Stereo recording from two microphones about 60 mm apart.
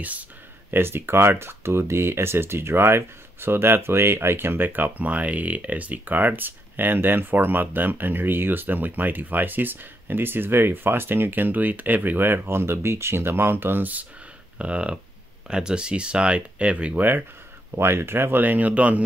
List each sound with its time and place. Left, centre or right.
0.7 s speech: right
14.6 s speech: right
17.6 s speech: right